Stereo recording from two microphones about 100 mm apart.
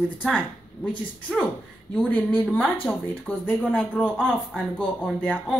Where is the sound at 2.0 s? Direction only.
15° left (ahead or behind).